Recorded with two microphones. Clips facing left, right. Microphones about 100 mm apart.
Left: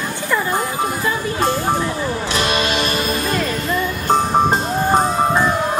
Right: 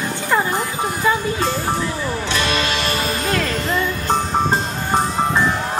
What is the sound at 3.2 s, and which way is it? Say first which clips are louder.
Music: even; 70° right (ahead or behind).